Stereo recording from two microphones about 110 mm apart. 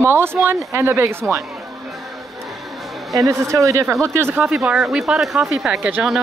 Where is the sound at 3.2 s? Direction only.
25° right (ahead or behind).